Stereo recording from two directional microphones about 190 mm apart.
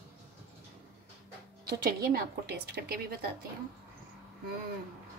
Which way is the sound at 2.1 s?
55° right (ahead or behind).